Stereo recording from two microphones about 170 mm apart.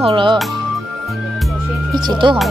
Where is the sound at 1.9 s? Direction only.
25° right (ahead or behind).